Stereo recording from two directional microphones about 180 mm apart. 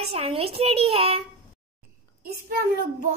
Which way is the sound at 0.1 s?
30° right (ahead or behind).